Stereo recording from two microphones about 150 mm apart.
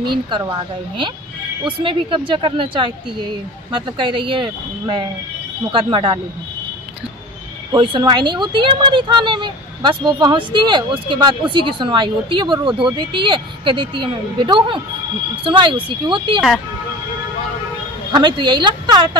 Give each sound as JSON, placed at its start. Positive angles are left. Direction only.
{"t": 0.0, "sound": "speech", "side_deg": -30}
{"t": 1.6, "sound": "speech", "side_deg": -35}
{"t": 7.7, "sound": "speech", "side_deg": -30}
{"t": 16.3, "sound": "speech", "side_deg": 0}
{"t": 18.1, "sound": "speech", "side_deg": -30}